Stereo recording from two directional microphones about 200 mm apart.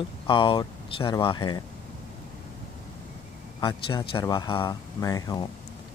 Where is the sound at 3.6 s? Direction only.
25° left (ahead or behind).